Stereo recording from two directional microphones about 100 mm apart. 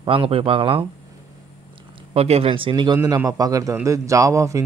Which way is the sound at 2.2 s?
90° right.